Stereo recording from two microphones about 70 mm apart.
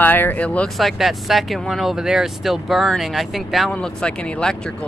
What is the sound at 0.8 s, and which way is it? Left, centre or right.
Speech, centre.